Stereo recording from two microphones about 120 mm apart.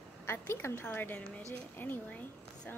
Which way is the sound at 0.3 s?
20° left (ahead or behind).